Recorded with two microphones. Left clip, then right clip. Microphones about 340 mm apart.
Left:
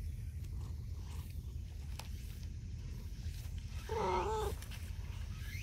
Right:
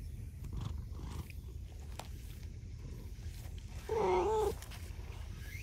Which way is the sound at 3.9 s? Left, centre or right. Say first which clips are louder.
Right 4 dB; right.